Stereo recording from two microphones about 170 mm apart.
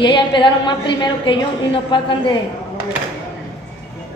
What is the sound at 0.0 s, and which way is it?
A woman's voice, 25° left (ahead or behind).